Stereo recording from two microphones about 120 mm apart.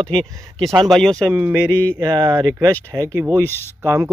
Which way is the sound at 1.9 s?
30° right (ahead or behind).